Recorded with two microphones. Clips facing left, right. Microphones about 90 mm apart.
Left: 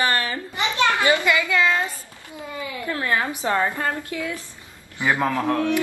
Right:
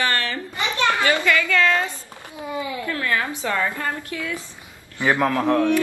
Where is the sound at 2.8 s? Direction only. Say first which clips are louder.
Left 3 dB; 25° left (ahead or behind).